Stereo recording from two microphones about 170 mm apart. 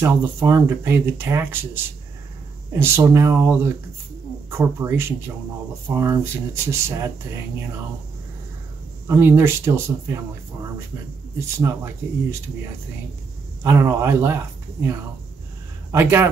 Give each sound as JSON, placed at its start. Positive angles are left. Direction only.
{"t": 0.0, "sound": "speech", "side_deg": -15}
{"t": 2.7, "sound": "speech", "side_deg": -15}
{"t": 9.0, "sound": "speech", "side_deg": -15}
{"t": 11.3, "sound": "speech", "side_deg": -15}
{"t": 13.7, "sound": "speech", "side_deg": -15}